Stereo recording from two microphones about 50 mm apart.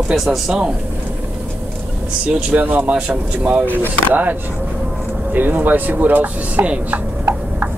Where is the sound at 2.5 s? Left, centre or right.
Right.